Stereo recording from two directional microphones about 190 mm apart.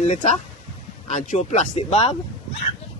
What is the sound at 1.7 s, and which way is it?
Speech, 30° left (ahead or behind).